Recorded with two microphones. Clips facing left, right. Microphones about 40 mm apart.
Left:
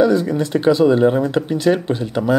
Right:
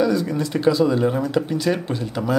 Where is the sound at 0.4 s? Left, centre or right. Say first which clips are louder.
Left 3 dB; left.